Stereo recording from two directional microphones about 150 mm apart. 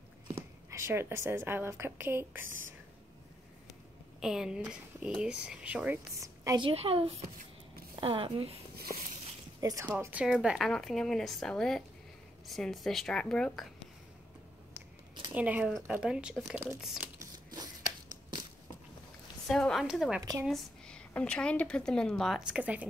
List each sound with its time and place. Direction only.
0.7 s a woman's voice: 20° right (ahead or behind)
4.2 s speech: 5° right (ahead or behind)
6.1 s a woman's voice: 20° right (ahead or behind)
6.6 s a woman's voice: 40° right (ahead or behind)
9.6 s a woman's voice: 20° right (ahead or behind)
9.8 s speech: 10° right (ahead or behind)
15.3 s a woman's voice: 10° right (ahead or behind)
17.2 s a sound: 25° right (ahead or behind)
19.4 s speech: centre (ahead or behind)